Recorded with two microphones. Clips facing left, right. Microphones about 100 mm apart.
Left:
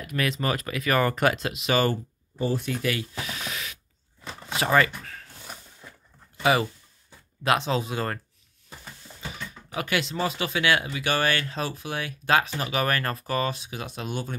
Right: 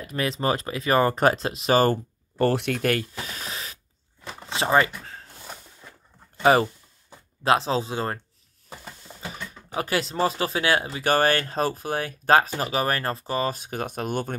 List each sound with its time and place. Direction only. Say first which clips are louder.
0.0 s speech: right 2 dB; 30° right (ahead or behind)
2.3 s a sound: right 5 dB; 75° right (ahead or behind); by 5.2 s 25° right (ahead or behind)
6.4 s speech: right 4 dB; 40° right (ahead or behind)
9.7 s speech: right 2 dB; 35° right (ahead or behind)
13.5 s speech: right 4 dB; 50° right (ahead or behind)